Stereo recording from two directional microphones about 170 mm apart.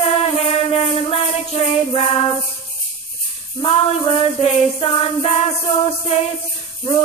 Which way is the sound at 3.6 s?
30° left (ahead or behind).